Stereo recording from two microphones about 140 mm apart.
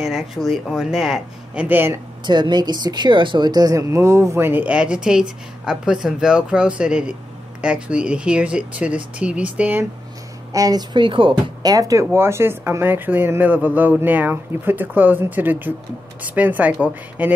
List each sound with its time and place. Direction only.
0.0 s speech: centre (ahead or behind)
2.2 s speech: 30° right (ahead or behind); by 9.8 s 10° right (ahead or behind)
10.5 s speech: 25° right (ahead or behind); by 17.3 s 10° right (ahead or behind)